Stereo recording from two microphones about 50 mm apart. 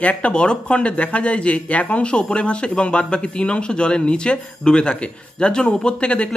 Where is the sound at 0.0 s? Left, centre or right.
Left.